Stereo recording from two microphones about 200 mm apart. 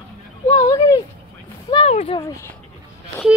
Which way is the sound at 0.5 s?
15° left (ahead or behind).